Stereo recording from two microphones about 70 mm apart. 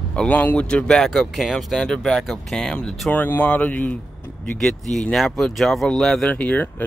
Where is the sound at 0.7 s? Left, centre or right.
Centre.